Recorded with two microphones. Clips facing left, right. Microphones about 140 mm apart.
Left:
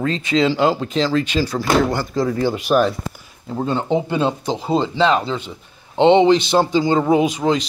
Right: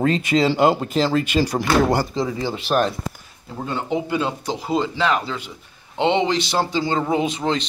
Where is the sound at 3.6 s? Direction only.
25° left (ahead or behind).